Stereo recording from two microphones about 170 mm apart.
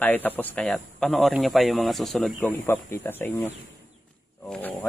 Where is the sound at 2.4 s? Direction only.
10° left (ahead or behind).